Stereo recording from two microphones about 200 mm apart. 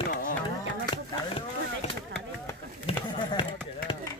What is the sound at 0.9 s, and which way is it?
Chop, 25° left (ahead or behind).